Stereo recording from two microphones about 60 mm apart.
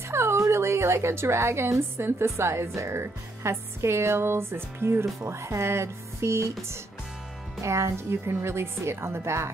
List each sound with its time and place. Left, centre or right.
0.1 s a woman's voice: right